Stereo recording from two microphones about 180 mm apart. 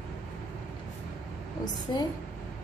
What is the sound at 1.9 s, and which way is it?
Speech, 25° left (ahead or behind).